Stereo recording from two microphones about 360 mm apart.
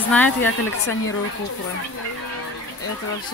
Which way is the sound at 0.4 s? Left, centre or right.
Left.